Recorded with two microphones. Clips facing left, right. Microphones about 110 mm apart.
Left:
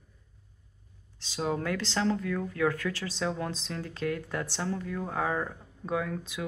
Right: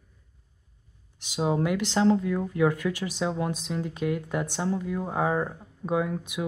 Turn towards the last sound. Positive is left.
turn(degrees=-20)  # may be behind; listen again after turning